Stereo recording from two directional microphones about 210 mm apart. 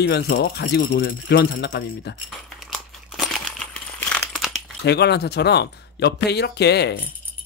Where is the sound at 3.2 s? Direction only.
Centre (ahead or behind).